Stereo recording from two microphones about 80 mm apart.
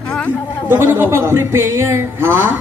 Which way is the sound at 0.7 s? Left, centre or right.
Right.